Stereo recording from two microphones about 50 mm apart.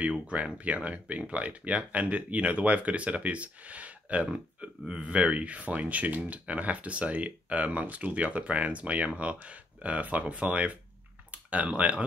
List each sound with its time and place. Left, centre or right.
0.3 s speech: right